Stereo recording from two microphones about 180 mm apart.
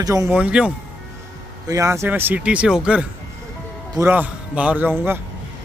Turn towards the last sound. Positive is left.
turn(degrees=-10)  # may be behind; listen again after turning